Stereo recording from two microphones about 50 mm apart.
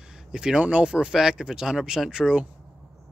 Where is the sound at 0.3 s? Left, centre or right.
Centre.